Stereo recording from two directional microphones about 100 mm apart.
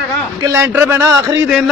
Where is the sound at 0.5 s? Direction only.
25° right (ahead or behind).